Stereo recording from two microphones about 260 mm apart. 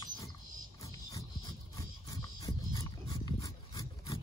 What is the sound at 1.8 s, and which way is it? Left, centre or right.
Dog, centre.